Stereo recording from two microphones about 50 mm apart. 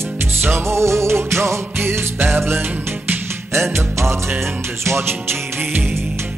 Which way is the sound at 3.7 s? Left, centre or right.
Right.